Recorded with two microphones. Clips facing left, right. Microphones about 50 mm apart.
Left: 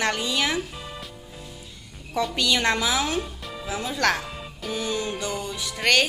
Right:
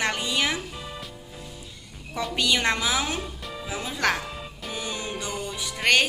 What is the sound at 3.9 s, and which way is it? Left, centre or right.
Speech, centre.